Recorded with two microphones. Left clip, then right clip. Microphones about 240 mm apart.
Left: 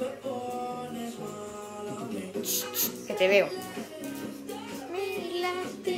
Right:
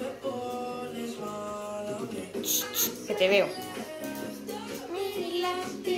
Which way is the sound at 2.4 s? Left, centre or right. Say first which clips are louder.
Right 4 dB; left.